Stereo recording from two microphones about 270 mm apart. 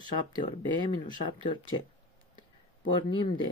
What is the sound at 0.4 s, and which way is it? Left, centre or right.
Speech, centre.